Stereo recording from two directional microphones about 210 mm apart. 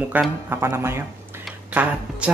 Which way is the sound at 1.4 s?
5° right (ahead or behind).